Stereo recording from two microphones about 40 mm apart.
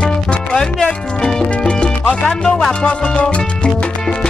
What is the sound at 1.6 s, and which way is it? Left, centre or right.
Music, left.